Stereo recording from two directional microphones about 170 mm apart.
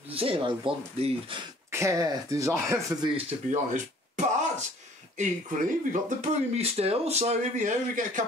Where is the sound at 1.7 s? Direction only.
20° right (ahead or behind).